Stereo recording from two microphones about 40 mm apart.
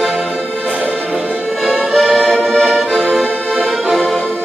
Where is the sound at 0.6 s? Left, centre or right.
Right.